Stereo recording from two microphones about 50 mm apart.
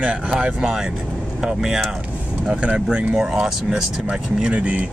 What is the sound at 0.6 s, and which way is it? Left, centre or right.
Speech, centre.